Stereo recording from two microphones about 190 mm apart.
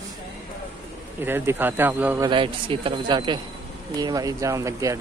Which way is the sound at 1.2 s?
10° right (ahead or behind).